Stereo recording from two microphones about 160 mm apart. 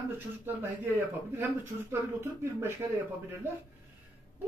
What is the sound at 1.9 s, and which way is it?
Speech, 15° right (ahead or behind).